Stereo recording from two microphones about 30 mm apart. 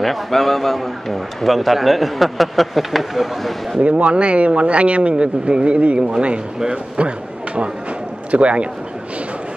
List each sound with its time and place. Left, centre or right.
0.0 s a man's voice: centre
3.9 s speech: right
5.9 s a man's voice: right
6.7 s a sound: right
8.3 s a man's voice: right